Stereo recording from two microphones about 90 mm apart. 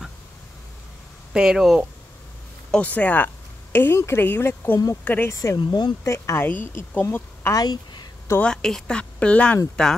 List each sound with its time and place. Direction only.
1.3 s speech: 5° right (ahead or behind)
2.7 s speech: 15° left (ahead or behind)
5.3 s speech: 35° left (ahead or behind)
5.6 s speech: 55° left (ahead or behind)
6.0 s a woman's voice: 30° left (ahead or behind)
7.5 s speech: 50° left (ahead or behind)
8.4 s speech: 5° left (ahead or behind)